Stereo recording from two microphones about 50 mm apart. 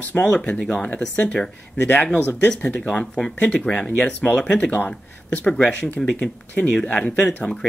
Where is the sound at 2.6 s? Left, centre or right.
Left.